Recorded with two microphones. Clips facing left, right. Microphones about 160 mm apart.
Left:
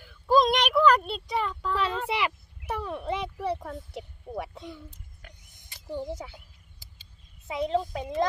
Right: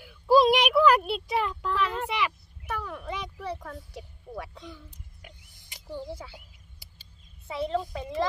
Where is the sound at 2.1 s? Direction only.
30° left (ahead or behind).